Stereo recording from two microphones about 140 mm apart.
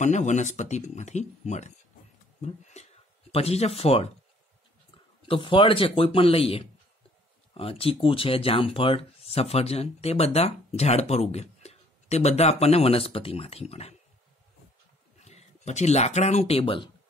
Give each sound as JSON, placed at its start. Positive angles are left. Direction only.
{"t": 0.0, "sound": "speech", "side_deg": 60}
{"t": 5.2, "sound": "speech", "side_deg": 40}
{"t": 15.2, "sound": "speech", "side_deg": 55}